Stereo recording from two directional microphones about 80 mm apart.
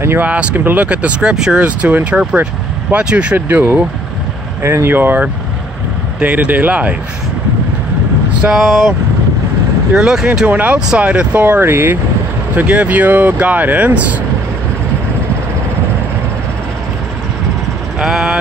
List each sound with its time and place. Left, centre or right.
0.0 s speech: right
3.3 s speech: right
8.3 s vehicle: centre
8.5 s speech: centre
9.9 s speech: centre
11.6 s speech: right
12.5 s speech: centre
17.9 s speech: centre